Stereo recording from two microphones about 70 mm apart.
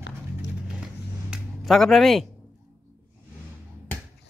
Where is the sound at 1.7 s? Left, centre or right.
Centre.